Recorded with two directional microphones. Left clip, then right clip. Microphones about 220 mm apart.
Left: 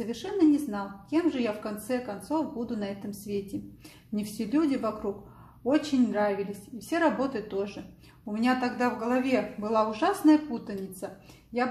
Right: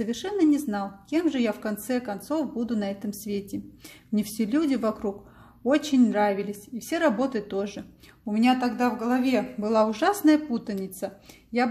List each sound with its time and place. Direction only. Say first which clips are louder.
0.0 s a woman's voice: right 1 dB; 40° right (ahead or behind)